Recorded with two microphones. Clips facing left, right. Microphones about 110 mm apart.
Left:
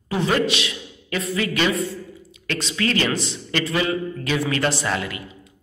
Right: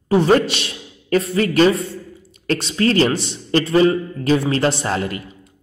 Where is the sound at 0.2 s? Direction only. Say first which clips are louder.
Right 5 dB; 40° right (ahead or behind).